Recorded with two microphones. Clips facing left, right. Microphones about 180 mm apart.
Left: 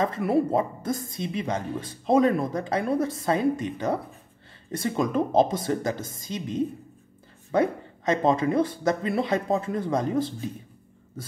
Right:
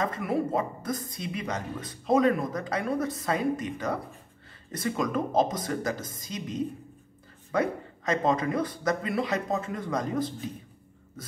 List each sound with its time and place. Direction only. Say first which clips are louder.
0.0 s speech: left 5 dB; 30° left (ahead or behind)